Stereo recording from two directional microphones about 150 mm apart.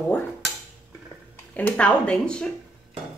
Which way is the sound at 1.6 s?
10° left (ahead or behind).